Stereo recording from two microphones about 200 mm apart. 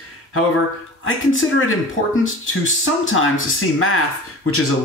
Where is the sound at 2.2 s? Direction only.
85° left.